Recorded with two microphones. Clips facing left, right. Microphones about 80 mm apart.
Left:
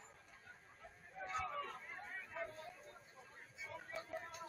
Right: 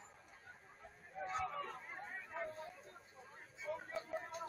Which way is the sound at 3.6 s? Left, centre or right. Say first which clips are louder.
Right 6 dB; right.